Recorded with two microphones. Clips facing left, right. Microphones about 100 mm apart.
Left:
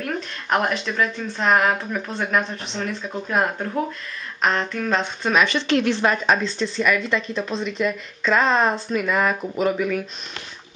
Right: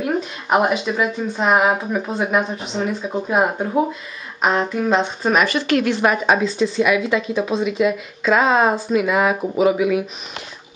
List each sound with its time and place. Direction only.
0.0 s a woman's voice: 10° right (ahead or behind)
5.7 s a woman's voice: 25° left (ahead or behind)
5.9 s a woman's voice: 10° right (ahead or behind)